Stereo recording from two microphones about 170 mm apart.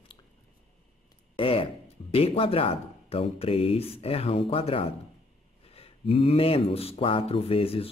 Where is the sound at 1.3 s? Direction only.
30° left (ahead or behind).